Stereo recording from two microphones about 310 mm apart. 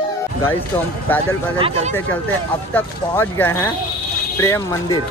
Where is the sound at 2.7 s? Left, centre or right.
Centre.